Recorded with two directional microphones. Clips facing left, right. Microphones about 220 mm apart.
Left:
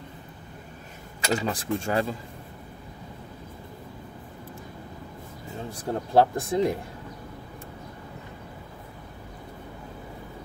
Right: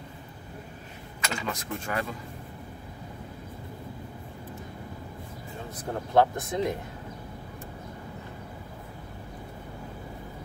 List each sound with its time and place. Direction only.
1.2 s speech: 35° left (ahead or behind)
5.7 s speech: 30° left (ahead or behind)